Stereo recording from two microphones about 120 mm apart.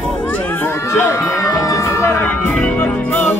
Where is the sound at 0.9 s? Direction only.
25° left (ahead or behind).